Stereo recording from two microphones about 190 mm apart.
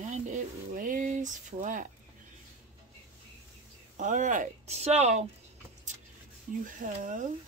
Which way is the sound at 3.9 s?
40° right (ahead or behind).